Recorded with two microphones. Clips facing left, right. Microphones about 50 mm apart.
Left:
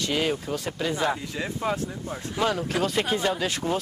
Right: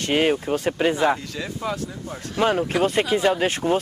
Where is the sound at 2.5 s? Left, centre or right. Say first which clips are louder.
Right 5 dB; right.